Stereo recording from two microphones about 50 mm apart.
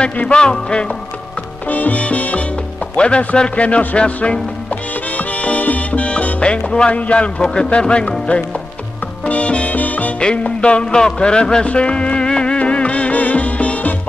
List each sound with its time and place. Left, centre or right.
0.0 s music: centre
1.7 s music: left
10.2 s music: left